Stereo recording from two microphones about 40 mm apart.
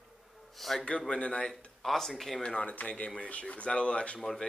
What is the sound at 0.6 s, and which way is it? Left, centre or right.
Speech, centre.